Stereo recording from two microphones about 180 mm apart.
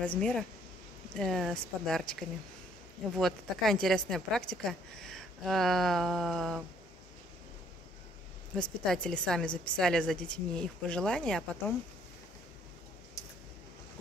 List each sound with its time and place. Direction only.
0.0 s a woman's voice: 5° left (ahead or behind)
8.8 s a woman's voice: 5° left (ahead or behind)
13.2 s a sound: 20° left (ahead or behind)